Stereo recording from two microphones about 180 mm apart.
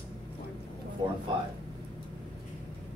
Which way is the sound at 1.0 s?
25° right (ahead or behind).